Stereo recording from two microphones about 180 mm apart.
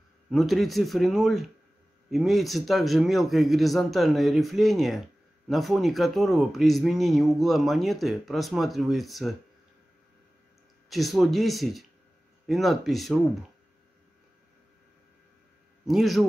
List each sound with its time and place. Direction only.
0.3 s speech: centre (ahead or behind)
10.9 s speech: centre (ahead or behind)
15.9 s speech: centre (ahead or behind)